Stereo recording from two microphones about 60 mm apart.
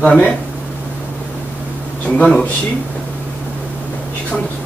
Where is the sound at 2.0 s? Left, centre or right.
Centre.